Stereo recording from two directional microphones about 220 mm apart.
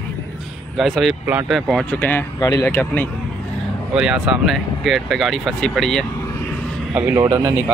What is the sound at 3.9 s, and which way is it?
Speech, 5° right (ahead or behind).